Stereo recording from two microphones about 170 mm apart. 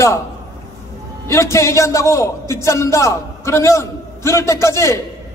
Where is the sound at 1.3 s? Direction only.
15° left (ahead or behind).